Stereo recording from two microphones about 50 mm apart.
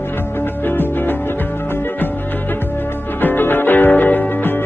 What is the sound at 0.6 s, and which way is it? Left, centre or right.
Music, left.